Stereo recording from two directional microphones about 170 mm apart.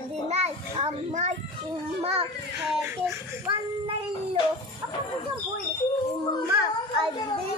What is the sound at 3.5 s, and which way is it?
Speech, 25° right (ahead or behind).